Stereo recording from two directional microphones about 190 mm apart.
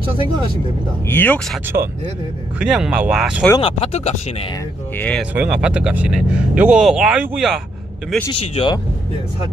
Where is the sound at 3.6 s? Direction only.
35° left (ahead or behind).